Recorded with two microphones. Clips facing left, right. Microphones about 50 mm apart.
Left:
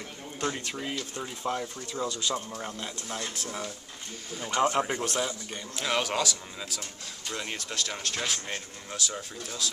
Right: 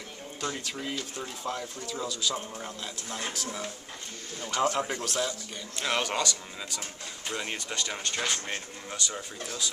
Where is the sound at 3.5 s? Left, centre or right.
Centre.